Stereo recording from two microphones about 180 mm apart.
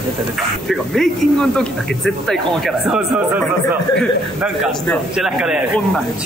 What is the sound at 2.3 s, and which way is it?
Speech, centre (ahead or behind).